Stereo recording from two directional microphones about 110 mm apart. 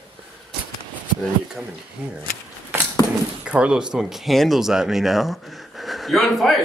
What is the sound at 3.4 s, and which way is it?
Speech, 10° right (ahead or behind).